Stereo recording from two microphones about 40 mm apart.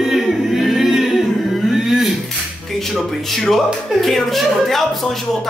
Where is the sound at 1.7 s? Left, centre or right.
Centre.